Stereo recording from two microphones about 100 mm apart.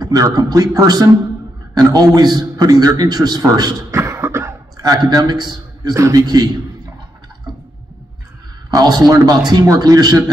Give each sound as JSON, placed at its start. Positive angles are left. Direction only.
{"t": 0.0, "sound": "a man's voice", "side_deg": -40}
{"t": 3.9, "sound": "cough", "side_deg": -25}
{"t": 8.6, "sound": "a man's voice", "side_deg": -40}